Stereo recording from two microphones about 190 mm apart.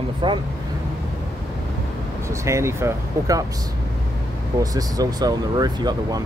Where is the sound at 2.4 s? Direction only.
15° right (ahead or behind).